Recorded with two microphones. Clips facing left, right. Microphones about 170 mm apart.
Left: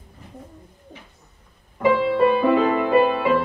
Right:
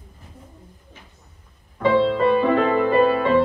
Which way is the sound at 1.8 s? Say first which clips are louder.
Even; 10° left (ahead or behind).